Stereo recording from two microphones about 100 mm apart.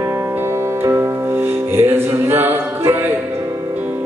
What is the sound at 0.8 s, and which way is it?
Music, 30° right (ahead or behind).